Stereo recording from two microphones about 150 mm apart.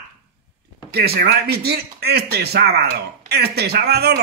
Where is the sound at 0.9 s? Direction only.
90° right.